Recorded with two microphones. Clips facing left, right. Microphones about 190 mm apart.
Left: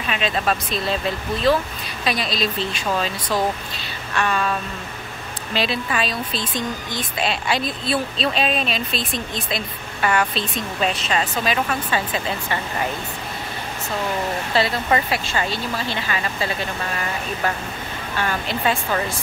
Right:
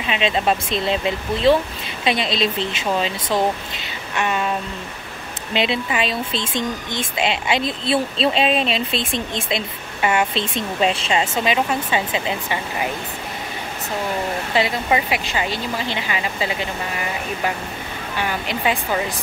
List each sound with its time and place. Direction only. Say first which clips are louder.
0.0 s speech: right 3 dB; 20° right (ahead or behind)
14.5 s speech: even; 15° right (ahead or behind)